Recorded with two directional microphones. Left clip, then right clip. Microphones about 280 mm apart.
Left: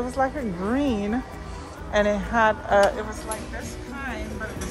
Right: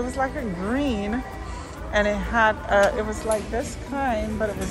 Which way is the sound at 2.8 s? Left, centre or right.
Centre.